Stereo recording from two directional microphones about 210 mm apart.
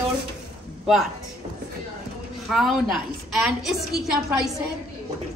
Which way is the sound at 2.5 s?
Centre (ahead or behind).